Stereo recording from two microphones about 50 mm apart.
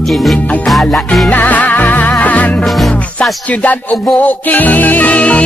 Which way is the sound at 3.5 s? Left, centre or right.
Left.